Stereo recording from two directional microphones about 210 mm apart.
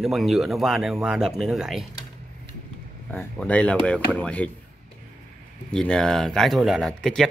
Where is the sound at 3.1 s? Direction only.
5° left (ahead or behind).